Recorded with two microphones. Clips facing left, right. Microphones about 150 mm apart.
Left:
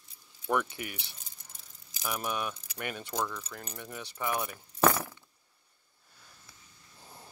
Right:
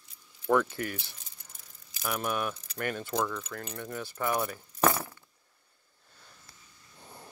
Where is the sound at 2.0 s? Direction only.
Centre (ahead or behind).